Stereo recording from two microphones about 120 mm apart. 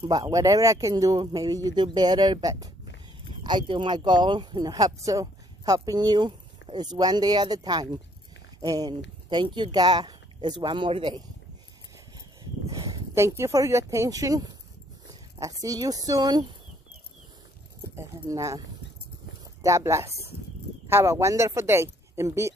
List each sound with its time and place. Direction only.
0.0 s speech: 45° right (ahead or behind)
0.3 s speech: 30° right (ahead or behind)
12.7 s speech: 25° right (ahead or behind)
17.9 s speech: 25° right (ahead or behind)
19.6 s speech: 25° right (ahead or behind)